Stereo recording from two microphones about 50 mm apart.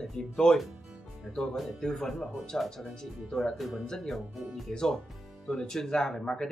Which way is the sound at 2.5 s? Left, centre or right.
Centre.